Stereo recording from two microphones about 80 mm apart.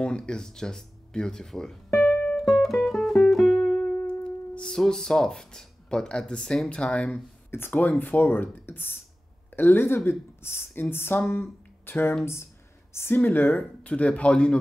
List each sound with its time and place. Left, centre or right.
0.0 s speech: centre
2.3 s music: centre
7.5 s speech: left